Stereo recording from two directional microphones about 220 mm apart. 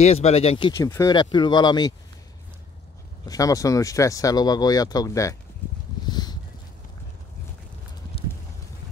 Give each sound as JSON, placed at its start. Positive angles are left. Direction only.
{"t": 0.0, "sound": "speech", "side_deg": 30}
{"t": 3.3, "sound": "speech", "side_deg": 15}
{"t": 6.0, "sound": "a sound", "side_deg": 20}